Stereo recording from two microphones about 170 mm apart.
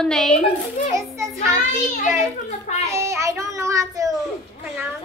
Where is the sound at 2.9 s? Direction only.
15° right (ahead or behind).